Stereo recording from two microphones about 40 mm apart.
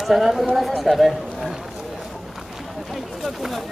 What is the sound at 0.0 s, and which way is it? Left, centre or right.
Speech, centre.